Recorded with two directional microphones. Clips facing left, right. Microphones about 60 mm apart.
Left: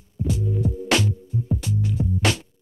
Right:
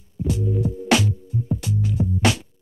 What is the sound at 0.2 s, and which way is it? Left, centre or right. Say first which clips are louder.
Music: right 1 dB; centre.